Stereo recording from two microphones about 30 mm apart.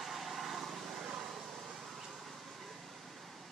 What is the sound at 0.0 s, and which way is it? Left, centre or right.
Vehicle, centre.